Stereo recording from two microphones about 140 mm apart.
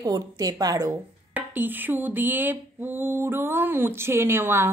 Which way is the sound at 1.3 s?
15° right (ahead or behind).